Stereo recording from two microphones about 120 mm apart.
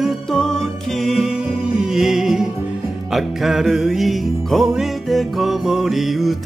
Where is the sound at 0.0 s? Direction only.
5° left (ahead or behind).